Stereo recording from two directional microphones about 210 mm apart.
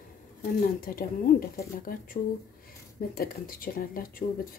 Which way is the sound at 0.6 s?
45° left (ahead or behind).